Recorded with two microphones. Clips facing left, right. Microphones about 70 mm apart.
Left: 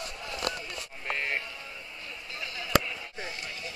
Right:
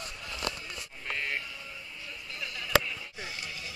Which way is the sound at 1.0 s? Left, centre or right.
Left.